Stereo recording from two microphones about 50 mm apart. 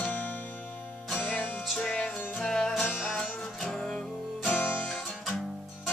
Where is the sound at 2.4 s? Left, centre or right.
Centre.